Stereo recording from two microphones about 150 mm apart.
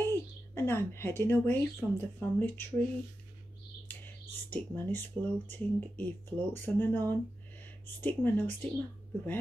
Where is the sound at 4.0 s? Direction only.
10° left (ahead or behind).